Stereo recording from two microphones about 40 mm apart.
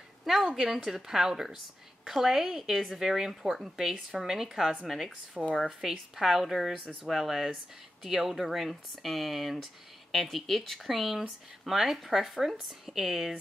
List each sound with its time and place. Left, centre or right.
0.2 s a woman's voice: centre
5.4 s speech: right
5.7 s a woman's voice: centre